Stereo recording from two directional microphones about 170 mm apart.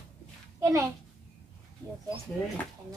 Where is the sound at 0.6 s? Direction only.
20° right (ahead or behind).